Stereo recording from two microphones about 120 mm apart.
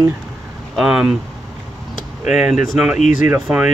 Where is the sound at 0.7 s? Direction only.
5° right (ahead or behind).